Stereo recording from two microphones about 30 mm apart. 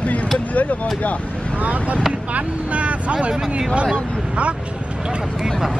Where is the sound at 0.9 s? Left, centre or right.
Left.